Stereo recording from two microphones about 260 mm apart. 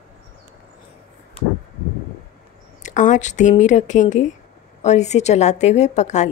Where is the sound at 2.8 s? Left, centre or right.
Left.